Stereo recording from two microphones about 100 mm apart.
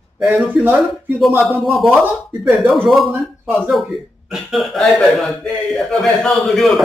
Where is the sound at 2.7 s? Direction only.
Centre (ahead or behind).